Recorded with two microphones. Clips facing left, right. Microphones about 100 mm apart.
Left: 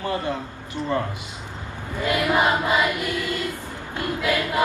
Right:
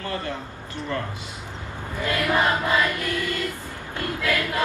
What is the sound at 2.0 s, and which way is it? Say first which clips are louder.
Choir: left 2 dB; 15° left (ahead or behind).